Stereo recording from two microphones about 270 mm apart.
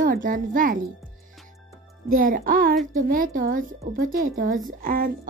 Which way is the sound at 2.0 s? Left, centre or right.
Right.